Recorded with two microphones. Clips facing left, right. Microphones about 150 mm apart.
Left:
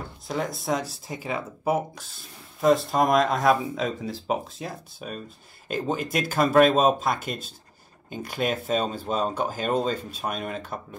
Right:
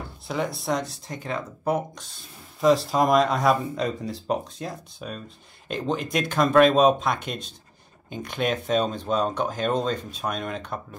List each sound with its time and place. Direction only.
0.3 s speech: centre (ahead or behind)